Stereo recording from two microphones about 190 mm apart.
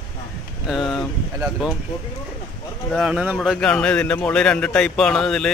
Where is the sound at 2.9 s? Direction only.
5° right (ahead or behind).